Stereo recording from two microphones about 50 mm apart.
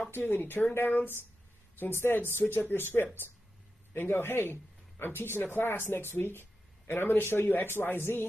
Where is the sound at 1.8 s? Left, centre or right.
Left.